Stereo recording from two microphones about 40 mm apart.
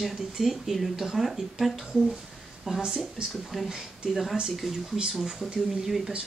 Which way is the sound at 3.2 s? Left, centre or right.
Right.